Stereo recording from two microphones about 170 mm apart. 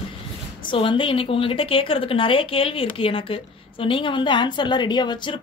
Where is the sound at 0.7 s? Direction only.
30° left (ahead or behind).